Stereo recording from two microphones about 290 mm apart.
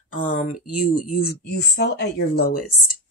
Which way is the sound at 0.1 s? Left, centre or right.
Left.